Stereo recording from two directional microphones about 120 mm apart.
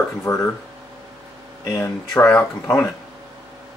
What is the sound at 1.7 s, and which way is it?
Speech, 15° left (ahead or behind).